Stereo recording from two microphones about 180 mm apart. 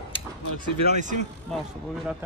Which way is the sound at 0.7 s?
35° right (ahead or behind).